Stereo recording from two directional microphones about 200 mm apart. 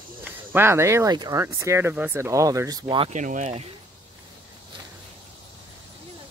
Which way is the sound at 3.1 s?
40° right (ahead or behind).